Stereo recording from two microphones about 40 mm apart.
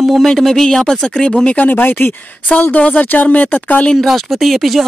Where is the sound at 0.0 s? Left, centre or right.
Centre.